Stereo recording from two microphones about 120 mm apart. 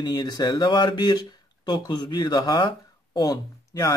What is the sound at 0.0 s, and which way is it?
Speech, 35° left (ahead or behind).